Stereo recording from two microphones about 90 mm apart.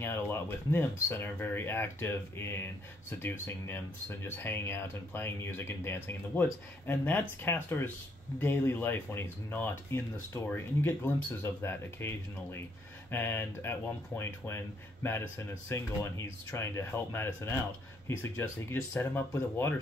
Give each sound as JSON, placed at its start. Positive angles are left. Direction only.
{"t": 0.0, "sound": "speech", "side_deg": 25}